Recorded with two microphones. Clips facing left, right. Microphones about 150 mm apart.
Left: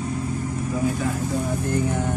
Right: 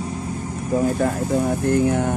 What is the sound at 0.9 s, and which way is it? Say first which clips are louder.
Speech: right 5 dB; 50° right (ahead or behind).